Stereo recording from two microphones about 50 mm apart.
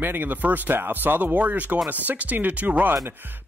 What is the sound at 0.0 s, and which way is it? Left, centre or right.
A man's voice, right.